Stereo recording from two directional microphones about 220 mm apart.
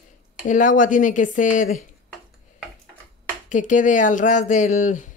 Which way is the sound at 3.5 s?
35° left (ahead or behind).